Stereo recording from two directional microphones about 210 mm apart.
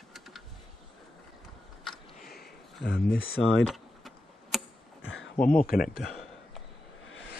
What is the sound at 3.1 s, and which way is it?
Speech, 75° left (ahead or behind).